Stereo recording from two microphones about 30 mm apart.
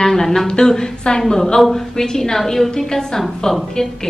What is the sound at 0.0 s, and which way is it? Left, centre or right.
A woman's voice, centre.